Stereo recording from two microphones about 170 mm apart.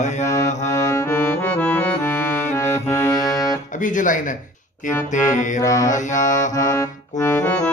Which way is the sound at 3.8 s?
50° left (ahead or behind).